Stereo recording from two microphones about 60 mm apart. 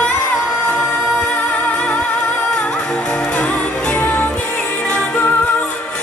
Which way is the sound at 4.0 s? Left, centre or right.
Left.